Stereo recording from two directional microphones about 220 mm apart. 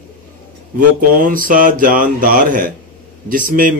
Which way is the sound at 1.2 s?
40° right (ahead or behind).